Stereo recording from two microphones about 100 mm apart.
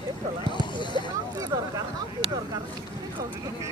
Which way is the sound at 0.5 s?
50° left (ahead or behind).